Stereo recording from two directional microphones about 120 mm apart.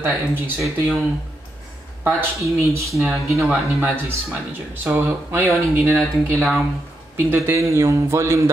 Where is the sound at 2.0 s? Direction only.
25° right (ahead or behind).